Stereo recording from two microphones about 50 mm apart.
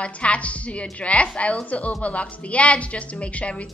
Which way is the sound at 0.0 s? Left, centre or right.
Left.